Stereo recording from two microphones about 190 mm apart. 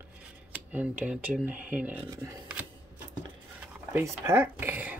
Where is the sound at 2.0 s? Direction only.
20° right (ahead or behind).